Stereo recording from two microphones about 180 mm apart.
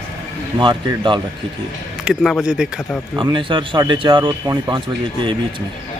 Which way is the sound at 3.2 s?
25° right (ahead or behind).